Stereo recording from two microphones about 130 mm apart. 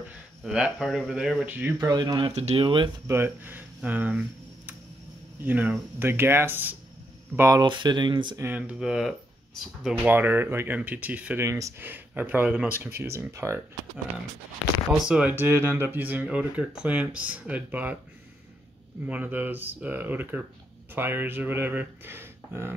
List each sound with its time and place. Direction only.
0.1 s speech: 5° right (ahead or behind)
1.5 s speech: 15° right (ahead or behind)
1.8 s speech: 30° right (ahead or behind)
2.3 s speech: 50° right (ahead or behind)
3.1 s speech: 15° right (ahead or behind)
7.6 s speech: 35° right (ahead or behind)
8.4 s speech: 15° right (ahead or behind)
9.8 s speech: 15° right (ahead or behind)
11.4 s speech: 25° right (ahead or behind)
14.9 s speech: 5° right (ahead or behind)
19.0 s speech: 10° right (ahead or behind)